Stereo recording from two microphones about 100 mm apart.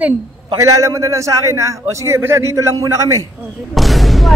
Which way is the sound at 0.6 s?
30° right (ahead or behind).